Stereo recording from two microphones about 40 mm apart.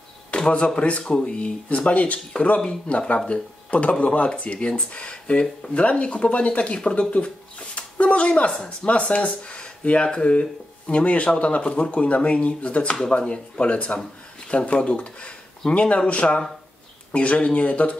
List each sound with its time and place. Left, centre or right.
0.3 s a sound: left
0.7 s speech: left
2.6 s speech: left
3.3 s speech: left
6.8 s speech: left